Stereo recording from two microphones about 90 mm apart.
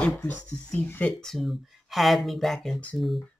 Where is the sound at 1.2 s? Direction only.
Centre (ahead or behind).